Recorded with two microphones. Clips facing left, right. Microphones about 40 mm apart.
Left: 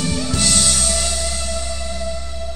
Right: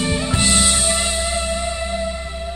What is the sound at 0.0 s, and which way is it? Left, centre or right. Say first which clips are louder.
Music: right 2 dB; right.